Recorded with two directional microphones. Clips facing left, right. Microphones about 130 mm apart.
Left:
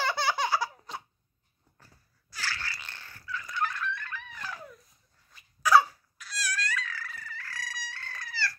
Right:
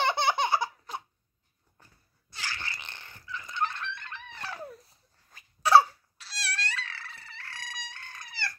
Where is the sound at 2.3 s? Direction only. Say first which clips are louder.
Left 1 dB; 20° right (ahead or behind).